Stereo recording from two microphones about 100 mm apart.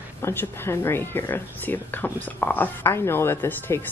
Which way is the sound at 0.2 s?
25° left (ahead or behind).